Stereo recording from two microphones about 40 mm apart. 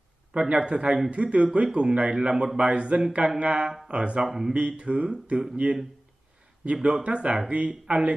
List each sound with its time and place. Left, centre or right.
0.4 s speech: right
4.2 s speech: centre
4.6 s speech: right
5.6 s speech: right
6.6 s speech: right